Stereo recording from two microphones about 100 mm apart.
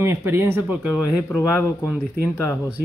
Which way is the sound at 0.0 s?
25° right (ahead or behind).